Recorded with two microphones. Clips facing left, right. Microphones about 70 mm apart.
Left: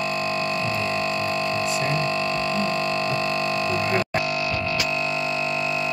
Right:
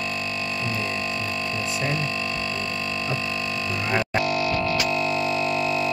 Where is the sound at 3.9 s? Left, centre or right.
Centre.